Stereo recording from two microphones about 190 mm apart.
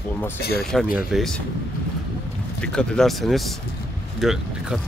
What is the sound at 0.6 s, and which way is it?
Speech, centre (ahead or behind).